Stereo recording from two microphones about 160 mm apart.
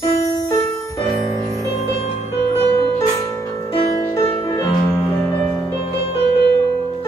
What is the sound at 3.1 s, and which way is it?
Music, 20° left (ahead or behind).